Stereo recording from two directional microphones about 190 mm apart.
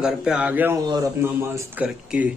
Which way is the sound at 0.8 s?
20° right (ahead or behind).